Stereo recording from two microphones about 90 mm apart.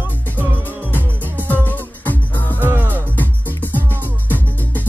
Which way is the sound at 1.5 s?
20° left (ahead or behind).